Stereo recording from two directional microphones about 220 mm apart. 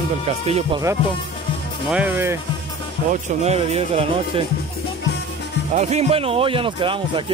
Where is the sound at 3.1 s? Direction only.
30° right (ahead or behind).